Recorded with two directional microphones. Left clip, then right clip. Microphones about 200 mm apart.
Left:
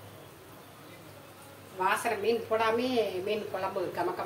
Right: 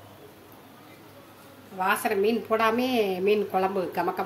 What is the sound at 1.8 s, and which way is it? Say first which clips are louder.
A woman's voice: right 4 dB; 65° right (ahead or behind).